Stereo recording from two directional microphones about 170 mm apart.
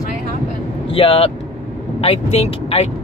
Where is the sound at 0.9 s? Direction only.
35° left (ahead or behind).